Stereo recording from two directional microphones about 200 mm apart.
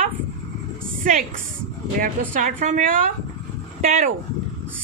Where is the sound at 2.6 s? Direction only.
40° right (ahead or behind).